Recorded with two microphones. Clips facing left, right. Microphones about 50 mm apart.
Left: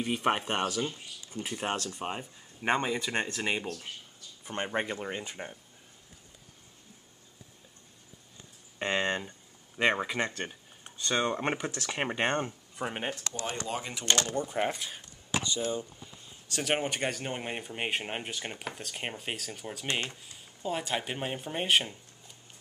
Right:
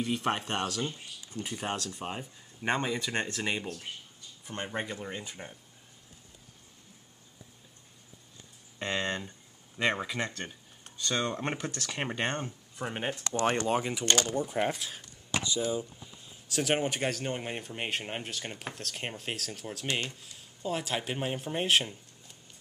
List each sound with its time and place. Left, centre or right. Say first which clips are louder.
0.0 s speech: left 2 dB; left
1.9 s speech: left 2 dB; centre
4.5 s speech: left 3 dB; left
8.7 s a sound: left 3 dB; centre
9.8 s speech: left 2 dB; centre
12.7 s speech: left 1 dB; centre
13.3 s speech: right 7 dB; right
13.7 s speech: right 2 dB; centre
19.9 s speech: even; left
20.3 s speech: even; centre